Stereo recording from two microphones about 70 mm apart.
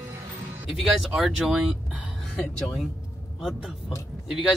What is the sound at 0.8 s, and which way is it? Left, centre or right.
Speech, centre.